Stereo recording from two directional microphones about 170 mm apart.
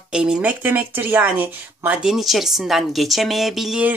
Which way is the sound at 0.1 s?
5° right (ahead or behind).